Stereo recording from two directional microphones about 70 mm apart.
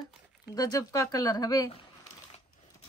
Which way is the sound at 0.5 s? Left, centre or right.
Left.